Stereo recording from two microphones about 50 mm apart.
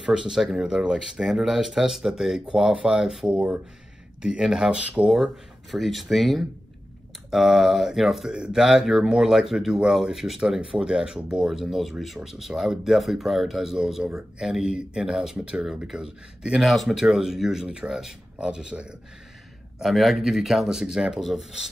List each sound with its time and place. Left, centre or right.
0.0 s speech: centre
3.3 s speech: right
5.1 s speech: centre
16.6 s speech: centre
16.9 s speech: centre
19.8 s speech: centre